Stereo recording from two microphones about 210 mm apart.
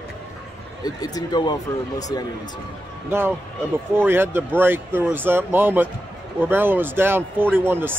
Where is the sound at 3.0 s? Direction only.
10° right (ahead or behind).